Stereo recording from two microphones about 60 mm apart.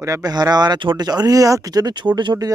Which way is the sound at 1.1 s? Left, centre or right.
Right.